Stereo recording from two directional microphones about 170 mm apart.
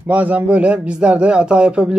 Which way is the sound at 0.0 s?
10° right (ahead or behind).